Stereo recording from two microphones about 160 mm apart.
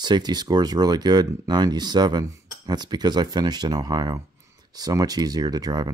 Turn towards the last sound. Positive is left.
turn(degrees=-25)  # may be behind; listen again after turning